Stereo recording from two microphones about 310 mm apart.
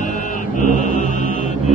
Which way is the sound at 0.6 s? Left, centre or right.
Left.